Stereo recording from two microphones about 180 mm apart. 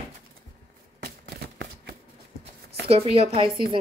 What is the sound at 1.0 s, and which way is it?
Shuffling cards, 60° right (ahead or behind).